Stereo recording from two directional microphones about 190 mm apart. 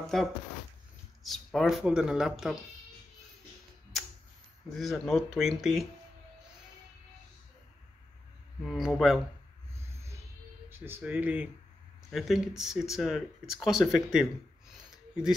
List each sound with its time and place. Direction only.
0.1 s speech: centre (ahead or behind)
4.7 s speech: centre (ahead or behind)
8.6 s speech: centre (ahead or behind)
10.7 s speech: 10° right (ahead or behind)